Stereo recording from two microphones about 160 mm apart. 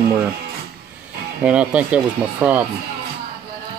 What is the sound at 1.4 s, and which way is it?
Speech, 10° right (ahead or behind).